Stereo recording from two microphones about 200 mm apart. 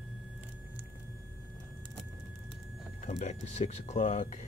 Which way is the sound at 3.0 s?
35° left (ahead or behind).